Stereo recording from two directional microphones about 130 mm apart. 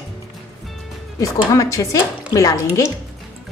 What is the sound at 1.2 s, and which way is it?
A woman's voice, 25° left (ahead or behind).